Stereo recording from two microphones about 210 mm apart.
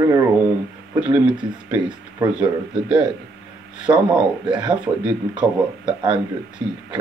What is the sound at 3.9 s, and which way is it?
Speech, 20° right (ahead or behind).